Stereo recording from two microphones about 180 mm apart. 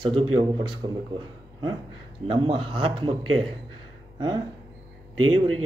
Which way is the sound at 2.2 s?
30° right (ahead or behind).